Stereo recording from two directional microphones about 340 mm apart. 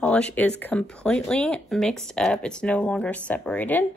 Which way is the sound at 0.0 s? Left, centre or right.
Centre.